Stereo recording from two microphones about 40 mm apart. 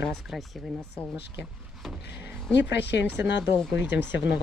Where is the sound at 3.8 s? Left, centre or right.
Right.